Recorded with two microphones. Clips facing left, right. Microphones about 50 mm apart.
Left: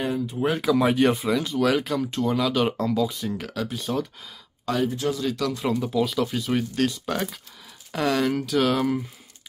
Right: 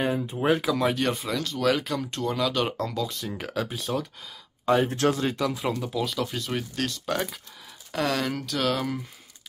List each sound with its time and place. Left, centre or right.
0.0 s speech: centre
0.6 s speech: centre
3.3 s speech: centre
4.7 s speech: right
5.0 s speech: right
5.7 s speech: centre